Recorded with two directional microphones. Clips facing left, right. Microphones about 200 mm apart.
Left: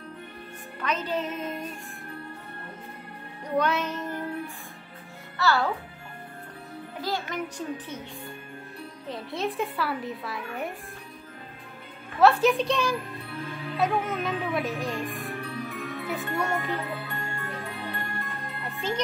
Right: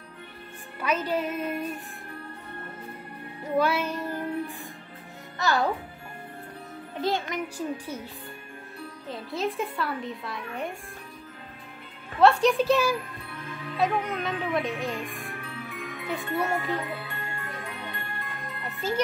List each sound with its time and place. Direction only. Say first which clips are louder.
0.7 s a woman's voice: right 2 dB; 10° right (ahead or behind)
3.4 s music: right 1 dB; 5° right (ahead or behind)
5.4 s a woman's voice: left 1 dB; 15° right (ahead or behind)
7.0 s speech: right 4 dB; 20° right (ahead or behind)
7.4 s a woman's voice: right 2 dB; 10° right (ahead or behind)
9.1 s a woman's voice: right 1 dB; centre (ahead or behind)
12.2 s a woman's voice: even; centre (ahead or behind)
15.4 s music: left 4 dB; 40° left (ahead or behind)